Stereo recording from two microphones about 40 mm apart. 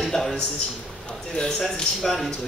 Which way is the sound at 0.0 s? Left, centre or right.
Centre.